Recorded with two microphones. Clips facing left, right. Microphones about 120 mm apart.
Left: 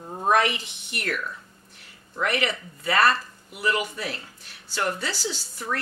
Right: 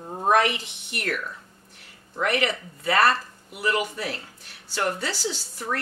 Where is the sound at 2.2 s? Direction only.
45° right (ahead or behind).